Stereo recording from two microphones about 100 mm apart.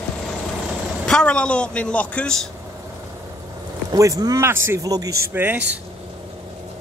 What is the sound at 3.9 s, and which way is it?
Speech, 35° right (ahead or behind).